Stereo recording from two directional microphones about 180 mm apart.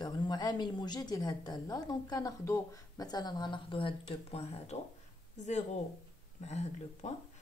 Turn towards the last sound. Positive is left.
turn(degrees=40)  # may be behind; listen again after turning